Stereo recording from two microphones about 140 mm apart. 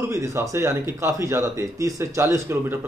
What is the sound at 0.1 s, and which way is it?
Speech, 20° right (ahead or behind).